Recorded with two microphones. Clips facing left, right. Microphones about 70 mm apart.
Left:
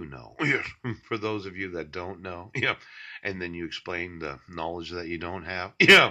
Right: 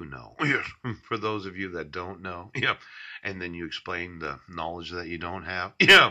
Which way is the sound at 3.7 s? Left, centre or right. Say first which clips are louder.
Even; left.